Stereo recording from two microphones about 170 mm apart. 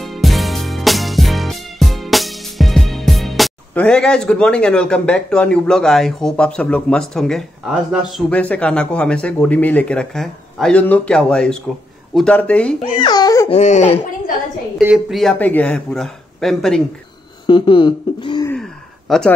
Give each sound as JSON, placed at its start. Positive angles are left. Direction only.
{"t": 0.0, "sound": "music", "side_deg": 0}
{"t": 8.3, "sound": "speech", "side_deg": 10}
{"t": 13.0, "sound": "speech", "side_deg": 25}
{"t": 13.5, "sound": "speech", "side_deg": 40}
{"t": 14.8, "sound": "speech", "side_deg": -5}
{"t": 17.5, "sound": "speech", "side_deg": 30}
{"t": 18.5, "sound": "a sound", "side_deg": 0}